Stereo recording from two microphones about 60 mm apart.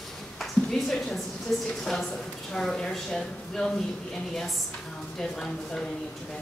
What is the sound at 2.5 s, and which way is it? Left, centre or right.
Speech, centre.